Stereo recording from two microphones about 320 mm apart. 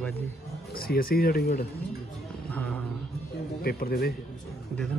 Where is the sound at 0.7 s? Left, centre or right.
Left.